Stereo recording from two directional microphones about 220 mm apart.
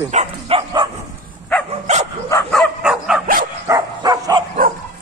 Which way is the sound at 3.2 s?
35° right (ahead or behind).